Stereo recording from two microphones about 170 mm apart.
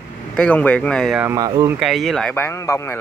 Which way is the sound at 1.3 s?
20° right (ahead or behind).